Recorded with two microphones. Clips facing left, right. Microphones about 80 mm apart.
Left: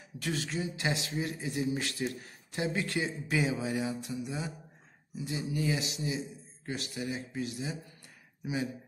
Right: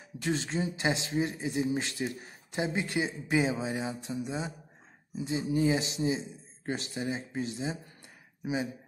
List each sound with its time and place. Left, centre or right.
0.2 s a man's voice: right